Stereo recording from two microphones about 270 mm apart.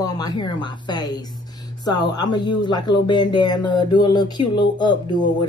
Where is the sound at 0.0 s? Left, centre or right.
Centre.